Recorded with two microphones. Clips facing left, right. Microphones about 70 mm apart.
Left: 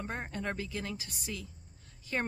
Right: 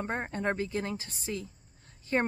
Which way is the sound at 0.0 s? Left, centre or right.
Right.